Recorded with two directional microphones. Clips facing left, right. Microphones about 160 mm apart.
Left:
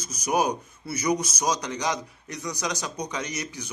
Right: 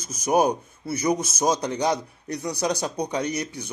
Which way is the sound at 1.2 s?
50° right (ahead or behind).